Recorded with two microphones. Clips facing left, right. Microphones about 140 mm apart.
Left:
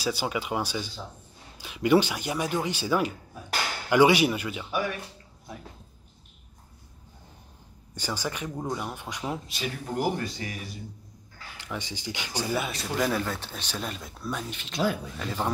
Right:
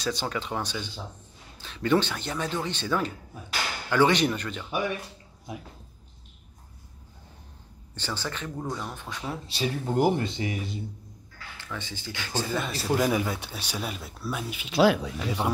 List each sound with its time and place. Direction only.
0.0 s speech: 10° left (ahead or behind)
7.9 s speech: 10° left (ahead or behind)
9.5 s speech: 30° right (ahead or behind)
11.5 s speech: 15° left (ahead or behind)
12.6 s speech: 5° right (ahead or behind)
14.8 s speech: 90° right
15.1 s speech: 10° right (ahead or behind)